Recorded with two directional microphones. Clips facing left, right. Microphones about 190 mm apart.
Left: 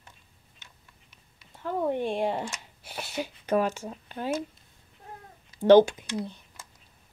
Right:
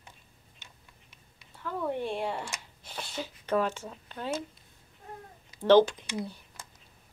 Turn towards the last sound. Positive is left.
turn(degrees=-10)  # may be behind; listen again after turning